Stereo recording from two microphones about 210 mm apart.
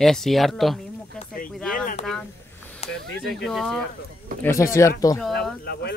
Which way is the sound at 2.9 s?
Centre (ahead or behind).